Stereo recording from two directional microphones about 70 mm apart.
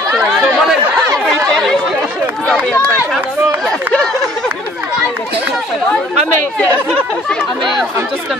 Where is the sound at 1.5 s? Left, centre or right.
Centre.